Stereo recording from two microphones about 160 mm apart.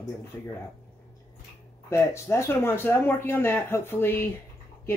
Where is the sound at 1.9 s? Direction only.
15° left (ahead or behind).